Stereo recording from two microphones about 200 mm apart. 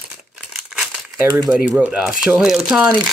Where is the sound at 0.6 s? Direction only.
5° right (ahead or behind).